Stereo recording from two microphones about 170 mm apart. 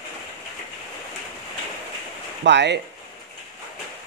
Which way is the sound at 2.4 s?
90° right.